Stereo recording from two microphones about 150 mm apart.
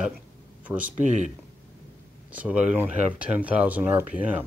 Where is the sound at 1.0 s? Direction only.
55° right (ahead or behind).